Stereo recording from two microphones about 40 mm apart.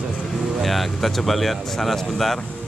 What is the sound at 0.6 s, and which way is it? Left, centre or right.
Speech, centre.